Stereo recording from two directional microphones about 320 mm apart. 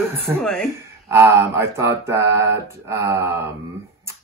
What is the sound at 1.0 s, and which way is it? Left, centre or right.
Mantra, centre.